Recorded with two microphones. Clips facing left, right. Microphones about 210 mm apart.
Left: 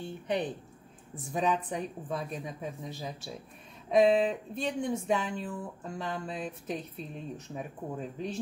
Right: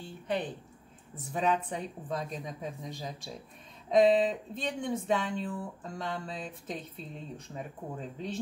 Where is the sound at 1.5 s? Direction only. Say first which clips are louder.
Even; 10° left (ahead or behind).